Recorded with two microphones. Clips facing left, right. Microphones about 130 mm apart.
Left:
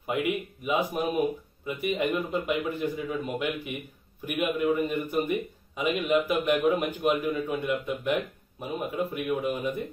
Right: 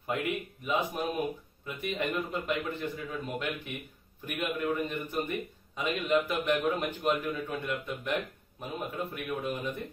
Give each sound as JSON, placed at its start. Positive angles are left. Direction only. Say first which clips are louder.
{"t": 0.0, "sound": "a man's voice", "louder": "left 4 dB", "side_deg": 10}